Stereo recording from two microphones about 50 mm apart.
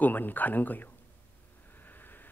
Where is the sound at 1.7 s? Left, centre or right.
Left.